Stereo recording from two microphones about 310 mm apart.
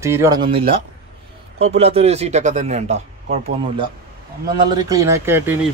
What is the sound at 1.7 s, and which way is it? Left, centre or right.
A man's voice, centre.